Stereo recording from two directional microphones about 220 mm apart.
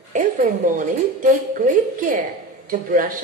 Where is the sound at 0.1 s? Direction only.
35° right (ahead or behind).